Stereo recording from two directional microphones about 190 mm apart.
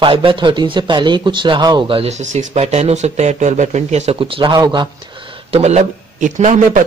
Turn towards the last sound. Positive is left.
turn(degrees=-40)  # may be behind; listen again after turning